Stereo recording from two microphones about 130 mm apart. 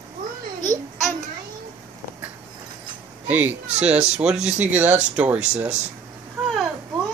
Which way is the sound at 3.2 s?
15° right (ahead or behind).